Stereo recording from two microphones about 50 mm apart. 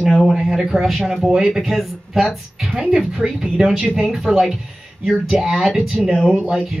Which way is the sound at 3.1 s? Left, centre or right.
Centre.